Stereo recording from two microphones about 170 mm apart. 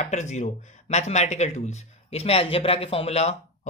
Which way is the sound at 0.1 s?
45° left (ahead or behind).